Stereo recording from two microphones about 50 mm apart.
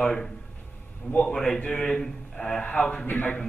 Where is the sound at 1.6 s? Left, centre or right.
Left.